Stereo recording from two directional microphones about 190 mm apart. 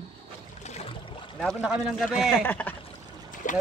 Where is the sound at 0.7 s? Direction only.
35° left (ahead or behind).